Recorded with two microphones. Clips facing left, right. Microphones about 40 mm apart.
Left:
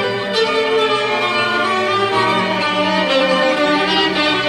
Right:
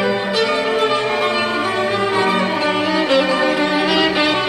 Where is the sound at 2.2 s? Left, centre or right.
Centre.